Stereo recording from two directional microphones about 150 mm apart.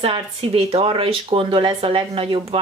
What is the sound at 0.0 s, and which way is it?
Speech, 40° right (ahead or behind).